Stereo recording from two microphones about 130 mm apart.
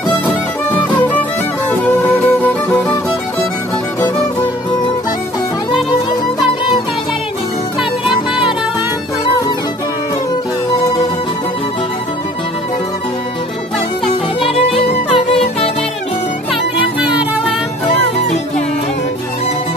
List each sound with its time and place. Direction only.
1.7 s music: 10° left (ahead or behind)
14.4 s music: 45° left (ahead or behind)